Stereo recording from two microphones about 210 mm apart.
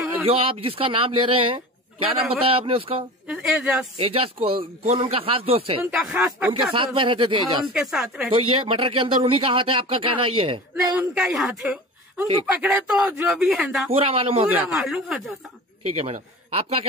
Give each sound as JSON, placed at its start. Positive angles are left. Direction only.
{"t": 0.3, "sound": "speech", "side_deg": -25}
{"t": 3.3, "sound": "speech", "side_deg": 0}
{"t": 3.9, "sound": "speech", "side_deg": -25}
{"t": 5.9, "sound": "speech", "side_deg": -5}
{"t": 6.5, "sound": "speech", "side_deg": -25}
{"t": 7.6, "sound": "speech", "side_deg": 0}
{"t": 8.4, "sound": "speech", "side_deg": -25}
{"t": 11.0, "sound": "speech", "side_deg": 0}
{"t": 13.9, "sound": "speech", "side_deg": -30}
{"t": 14.6, "sound": "speech", "side_deg": 0}
{"t": 16.0, "sound": "a man's voice", "side_deg": -30}